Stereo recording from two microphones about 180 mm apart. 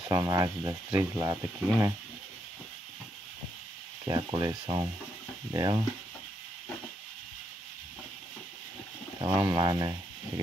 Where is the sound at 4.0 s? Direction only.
20° right (ahead or behind).